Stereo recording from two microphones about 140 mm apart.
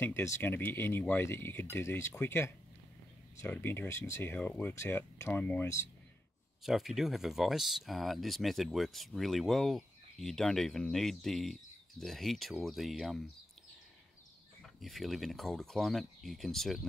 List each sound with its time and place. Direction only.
0.0 s speech: 15° left (ahead or behind)
6.6 s speech: centre (ahead or behind)
14.6 s speech: centre (ahead or behind)